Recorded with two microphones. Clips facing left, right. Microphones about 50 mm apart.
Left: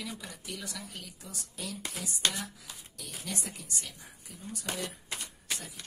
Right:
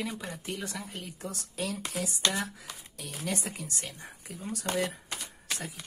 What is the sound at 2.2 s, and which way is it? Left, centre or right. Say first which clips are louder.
Speech: right 1 dB; right.